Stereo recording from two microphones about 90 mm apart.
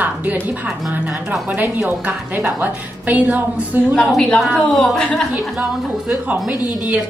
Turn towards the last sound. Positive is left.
turn(degrees=-10)  # may be behind; listen again after turning